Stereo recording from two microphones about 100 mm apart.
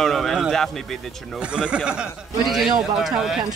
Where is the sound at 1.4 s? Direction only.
10° right (ahead or behind).